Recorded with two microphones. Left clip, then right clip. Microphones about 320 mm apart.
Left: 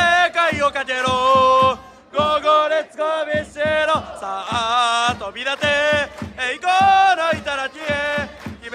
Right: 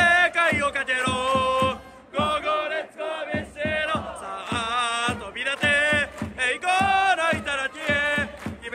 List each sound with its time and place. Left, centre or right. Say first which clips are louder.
0.0 s music: left 3 dB; centre
3.0 s choir: left 9 dB; left
3.7 s music: left 7 dB; centre